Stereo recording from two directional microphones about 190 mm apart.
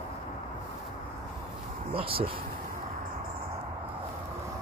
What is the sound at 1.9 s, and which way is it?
Speech, 30° right (ahead or behind).